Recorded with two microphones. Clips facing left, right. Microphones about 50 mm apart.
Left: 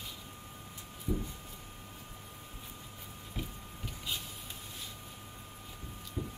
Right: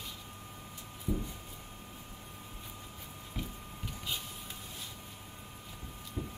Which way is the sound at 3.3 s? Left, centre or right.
Centre.